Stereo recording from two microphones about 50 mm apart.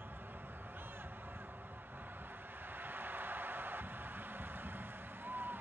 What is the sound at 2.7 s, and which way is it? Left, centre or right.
Music, right.